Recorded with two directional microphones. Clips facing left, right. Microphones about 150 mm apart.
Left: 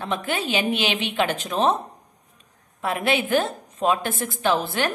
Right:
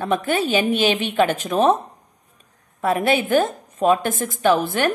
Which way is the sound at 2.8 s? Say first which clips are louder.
Right 4 dB; 45° right (ahead or behind).